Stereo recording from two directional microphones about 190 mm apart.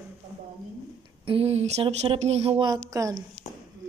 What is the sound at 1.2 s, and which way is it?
A woman's voice, 30° right (ahead or behind).